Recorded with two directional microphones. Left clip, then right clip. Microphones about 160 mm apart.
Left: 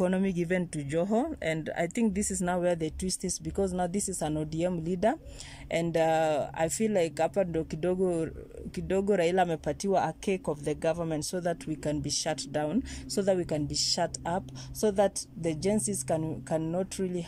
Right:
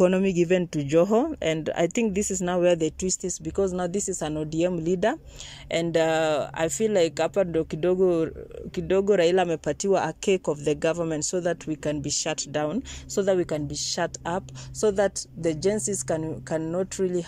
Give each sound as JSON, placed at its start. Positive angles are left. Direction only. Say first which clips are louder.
{"t": 0.0, "sound": "speech", "louder": "right 8 dB", "side_deg": -10}